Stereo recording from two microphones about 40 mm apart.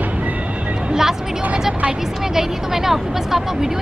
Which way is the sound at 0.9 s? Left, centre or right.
Centre.